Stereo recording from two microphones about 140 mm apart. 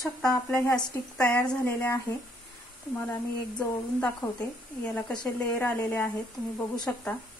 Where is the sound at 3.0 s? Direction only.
15° left (ahead or behind).